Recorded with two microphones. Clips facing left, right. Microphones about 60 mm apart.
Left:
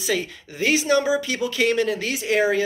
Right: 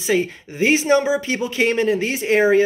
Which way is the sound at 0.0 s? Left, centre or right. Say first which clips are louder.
Right 5 dB; right.